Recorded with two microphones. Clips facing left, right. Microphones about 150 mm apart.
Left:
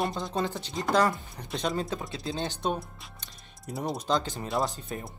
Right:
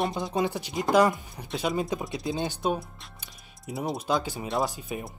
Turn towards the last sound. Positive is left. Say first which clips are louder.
# right 2 dB
turn(degrees=-10)  # may be behind; listen again after turning